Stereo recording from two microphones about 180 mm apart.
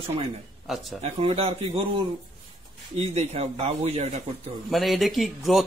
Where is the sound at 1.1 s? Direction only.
35° right (ahead or behind).